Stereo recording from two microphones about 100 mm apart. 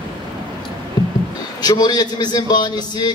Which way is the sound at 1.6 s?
40° left (ahead or behind).